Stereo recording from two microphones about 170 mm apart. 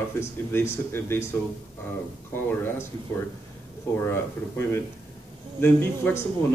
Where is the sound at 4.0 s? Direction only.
15° left (ahead or behind).